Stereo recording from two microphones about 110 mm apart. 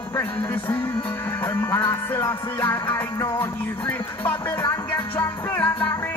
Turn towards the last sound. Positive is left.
turn(degrees=15)  # may be behind; listen again after turning